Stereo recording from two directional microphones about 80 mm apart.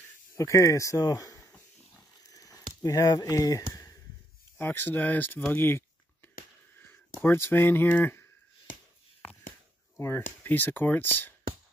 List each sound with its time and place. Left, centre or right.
0.3 s speech: left
2.2 s a sound: left
4.6 s speech: left
5.5 s a sound: left
7.2 s speech: left
9.9 s speech: left